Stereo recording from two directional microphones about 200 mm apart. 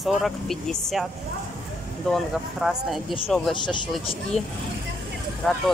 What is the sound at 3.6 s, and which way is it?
Speech, 25° left (ahead or behind).